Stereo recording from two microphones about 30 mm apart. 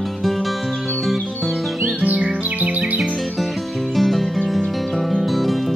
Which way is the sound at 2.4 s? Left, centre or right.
Right.